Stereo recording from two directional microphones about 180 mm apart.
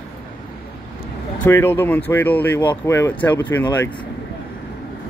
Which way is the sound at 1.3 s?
10° left (ahead or behind).